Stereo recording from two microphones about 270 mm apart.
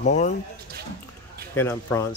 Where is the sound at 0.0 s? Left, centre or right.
Left.